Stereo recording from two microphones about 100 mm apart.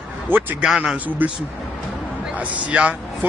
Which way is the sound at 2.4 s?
15° right (ahead or behind).